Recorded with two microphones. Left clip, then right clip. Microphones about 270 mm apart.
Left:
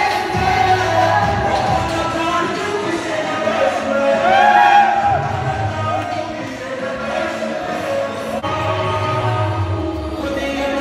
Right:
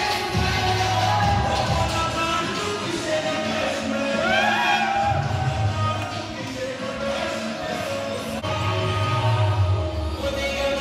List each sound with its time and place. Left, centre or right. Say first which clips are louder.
0.0 s music: left 7 dB; centre
0.7 s music: left 7 dB; centre
4.2 s music: left 9 dB; centre